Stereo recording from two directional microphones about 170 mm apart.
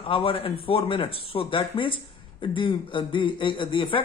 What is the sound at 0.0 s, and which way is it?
Speech, 30° left (ahead or behind).